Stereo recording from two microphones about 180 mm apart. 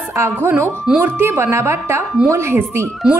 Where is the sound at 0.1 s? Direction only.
15° right (ahead or behind).